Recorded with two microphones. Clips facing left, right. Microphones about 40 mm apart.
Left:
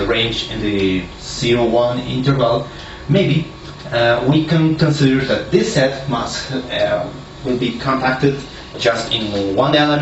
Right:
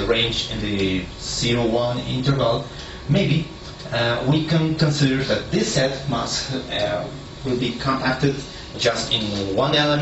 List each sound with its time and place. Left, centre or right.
0.0 s speech: left